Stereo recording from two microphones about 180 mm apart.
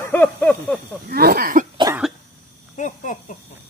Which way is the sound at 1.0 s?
60° right (ahead or behind).